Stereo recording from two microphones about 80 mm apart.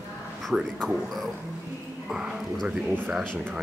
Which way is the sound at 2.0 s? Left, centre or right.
Centre.